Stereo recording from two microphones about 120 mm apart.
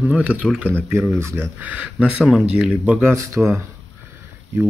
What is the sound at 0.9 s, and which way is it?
Speech, 20° right (ahead or behind).